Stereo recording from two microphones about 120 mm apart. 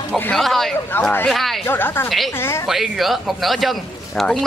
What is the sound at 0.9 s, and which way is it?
Speech, 15° left (ahead or behind).